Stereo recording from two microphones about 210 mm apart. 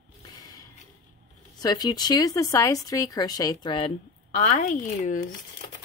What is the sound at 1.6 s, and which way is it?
Speech, 20° left (ahead or behind).